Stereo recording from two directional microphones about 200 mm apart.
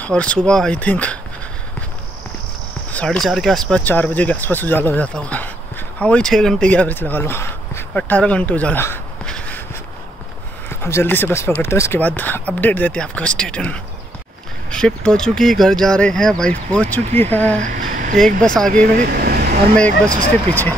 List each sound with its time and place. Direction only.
0.0 s speech: 5° left (ahead or behind)
2.9 s speech: 5° left (ahead or behind)
10.7 s speech: 10° left (ahead or behind)
17.6 s a sound: 40° right (ahead or behind)
18.2 s speech: 5° left (ahead or behind)
18.7 s speech: 45° right (ahead or behind)